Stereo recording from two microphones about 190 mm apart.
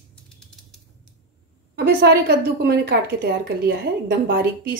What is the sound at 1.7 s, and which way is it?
A woman's voice, 60° right (ahead or behind).